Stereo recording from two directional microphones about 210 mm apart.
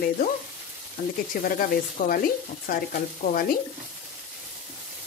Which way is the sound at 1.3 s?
40° left (ahead or behind).